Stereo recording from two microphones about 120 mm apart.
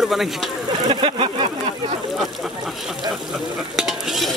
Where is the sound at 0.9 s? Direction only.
45° right (ahead or behind).